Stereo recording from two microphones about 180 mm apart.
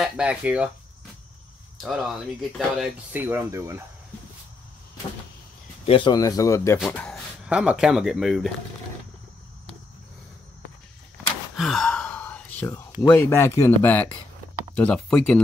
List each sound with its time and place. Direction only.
0.0 s speech: 5° right (ahead or behind)
1.8 s speech: centre (ahead or behind); by 3.8 s 15° right (ahead or behind)
5.9 s speech: 25° left (ahead or behind)
6.8 s speech: 5° left (ahead or behind)
7.4 s speech: 5° right (ahead or behind)
11.5 s sigh: centre (ahead or behind)
13.1 s speech: 15° left (ahead or behind)